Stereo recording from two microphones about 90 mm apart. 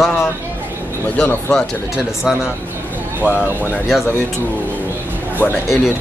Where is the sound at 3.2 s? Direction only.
20° right (ahead or behind).